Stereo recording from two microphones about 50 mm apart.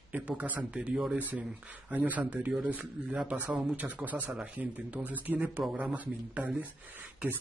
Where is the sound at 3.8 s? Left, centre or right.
Right.